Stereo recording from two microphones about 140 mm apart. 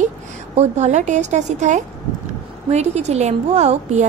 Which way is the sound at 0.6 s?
55° right (ahead or behind).